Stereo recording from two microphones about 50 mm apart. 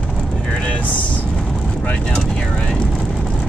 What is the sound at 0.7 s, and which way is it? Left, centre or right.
Vehicle, left.